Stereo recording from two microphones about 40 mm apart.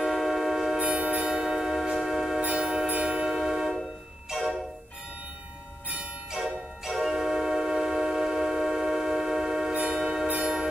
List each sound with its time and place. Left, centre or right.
0.0 s music: centre
0.8 s music: right; by 2.4 s centre
2.5 s music: centre
3.3 s music: centre
6.3 s music: centre
10.4 s a sound: centre